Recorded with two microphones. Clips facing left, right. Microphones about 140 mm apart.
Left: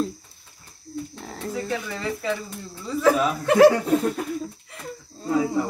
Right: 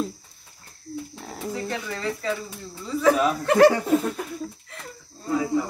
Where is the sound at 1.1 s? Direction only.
5° right (ahead or behind).